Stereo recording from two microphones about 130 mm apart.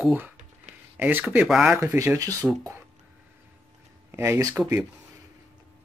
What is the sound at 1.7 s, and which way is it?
Speech, 20° right (ahead or behind).